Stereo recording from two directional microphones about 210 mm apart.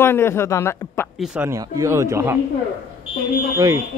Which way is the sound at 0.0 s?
10° left (ahead or behind).